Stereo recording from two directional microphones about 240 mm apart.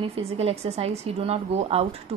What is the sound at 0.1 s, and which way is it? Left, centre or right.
A woman's voice, right.